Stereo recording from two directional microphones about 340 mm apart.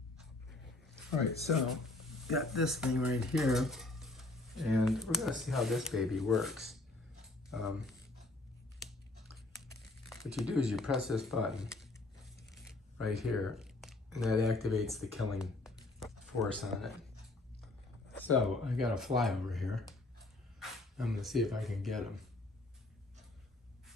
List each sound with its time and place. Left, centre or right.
1.4 s speech: centre
10.0 s speech: centre
13.0 s speech: centre
18.1 s speech: centre